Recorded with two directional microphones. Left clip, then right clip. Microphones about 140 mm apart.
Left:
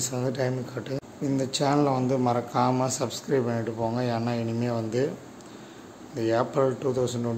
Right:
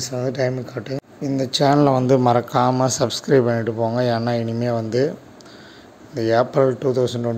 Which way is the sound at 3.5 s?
30° right (ahead or behind).